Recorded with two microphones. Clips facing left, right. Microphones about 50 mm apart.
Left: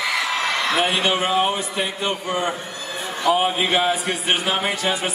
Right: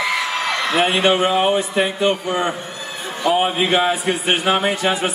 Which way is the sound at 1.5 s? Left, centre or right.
Right.